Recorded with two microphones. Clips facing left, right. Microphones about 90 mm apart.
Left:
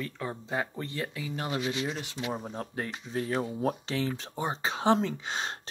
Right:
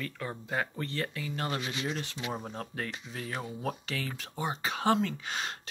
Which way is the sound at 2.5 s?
20° left (ahead or behind).